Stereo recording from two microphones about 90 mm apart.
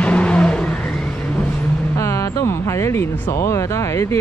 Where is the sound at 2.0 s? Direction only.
35° left (ahead or behind).